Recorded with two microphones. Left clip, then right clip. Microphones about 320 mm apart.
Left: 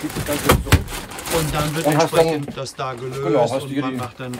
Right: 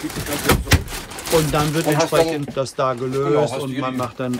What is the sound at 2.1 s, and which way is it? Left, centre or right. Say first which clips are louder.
Speech: even; centre.